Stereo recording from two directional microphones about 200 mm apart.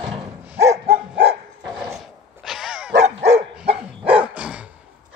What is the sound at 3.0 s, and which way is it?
Dog, 35° right (ahead or behind).